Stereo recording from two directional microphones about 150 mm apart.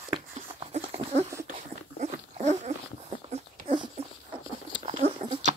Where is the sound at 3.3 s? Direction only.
40° right (ahead or behind).